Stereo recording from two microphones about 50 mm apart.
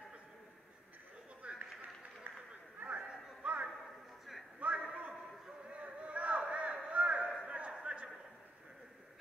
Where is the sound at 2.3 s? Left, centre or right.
Right.